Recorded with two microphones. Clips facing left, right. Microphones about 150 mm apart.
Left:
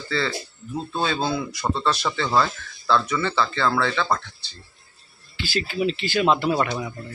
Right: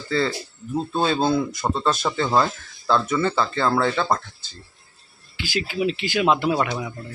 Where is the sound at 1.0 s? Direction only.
45° right (ahead or behind).